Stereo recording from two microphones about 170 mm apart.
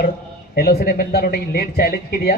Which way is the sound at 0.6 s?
65° left (ahead or behind).